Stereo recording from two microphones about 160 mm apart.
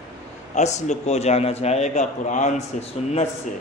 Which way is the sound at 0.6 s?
45° left (ahead or behind).